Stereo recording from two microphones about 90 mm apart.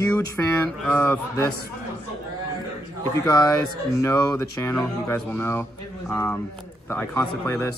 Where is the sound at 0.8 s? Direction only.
10° left (ahead or behind).